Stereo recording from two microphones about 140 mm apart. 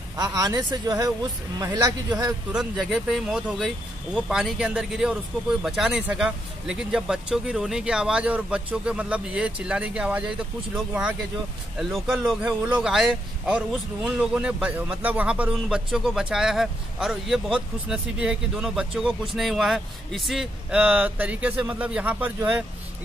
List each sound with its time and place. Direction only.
0.2 s speech: 25° right (ahead or behind)
2.5 s speech: 5° right (ahead or behind)